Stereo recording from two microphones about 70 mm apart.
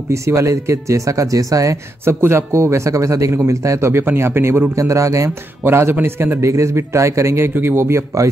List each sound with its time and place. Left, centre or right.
0.1 s speech: right
2.0 s a man's voice: right
4.7 s speech: right
5.6 s a man's voice: right